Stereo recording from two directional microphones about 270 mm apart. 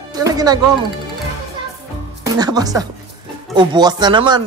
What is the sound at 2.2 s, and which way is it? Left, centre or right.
Speech, centre.